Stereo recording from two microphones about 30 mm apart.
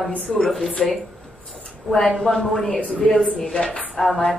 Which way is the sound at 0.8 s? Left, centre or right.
Left.